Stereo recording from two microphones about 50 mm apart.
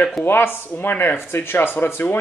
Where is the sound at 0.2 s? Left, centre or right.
Left.